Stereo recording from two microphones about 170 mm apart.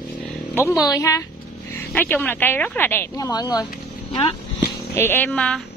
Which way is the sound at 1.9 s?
10° left (ahead or behind).